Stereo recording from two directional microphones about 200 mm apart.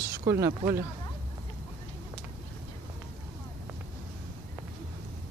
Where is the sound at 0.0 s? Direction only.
15° right (ahead or behind).